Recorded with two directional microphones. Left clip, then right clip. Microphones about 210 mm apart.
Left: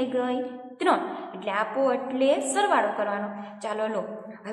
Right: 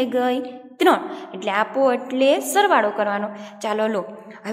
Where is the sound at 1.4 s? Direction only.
35° right (ahead or behind).